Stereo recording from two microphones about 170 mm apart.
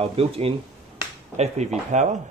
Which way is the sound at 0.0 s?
35° right (ahead or behind).